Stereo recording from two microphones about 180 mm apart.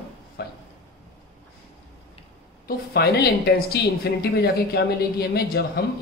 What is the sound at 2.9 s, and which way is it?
Speech, 65° left (ahead or behind).